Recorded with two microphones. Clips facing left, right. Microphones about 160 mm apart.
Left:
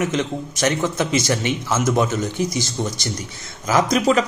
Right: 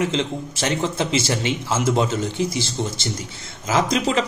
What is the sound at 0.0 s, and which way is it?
A man's voice, 25° right (ahead or behind).